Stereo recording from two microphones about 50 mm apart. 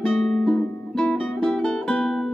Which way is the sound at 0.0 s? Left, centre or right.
Centre.